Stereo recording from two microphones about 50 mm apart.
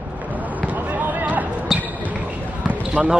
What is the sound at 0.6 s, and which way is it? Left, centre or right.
Basketball bounce, right.